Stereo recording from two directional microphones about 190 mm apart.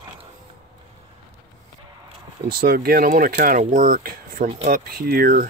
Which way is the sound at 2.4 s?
50° right (ahead or behind).